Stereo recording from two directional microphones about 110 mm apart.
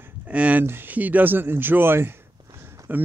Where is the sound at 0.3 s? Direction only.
10° right (ahead or behind).